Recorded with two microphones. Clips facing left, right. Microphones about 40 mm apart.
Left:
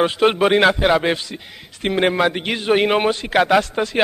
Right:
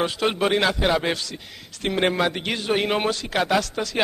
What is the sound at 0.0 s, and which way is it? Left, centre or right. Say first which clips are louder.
Speech: left 7 dB; left.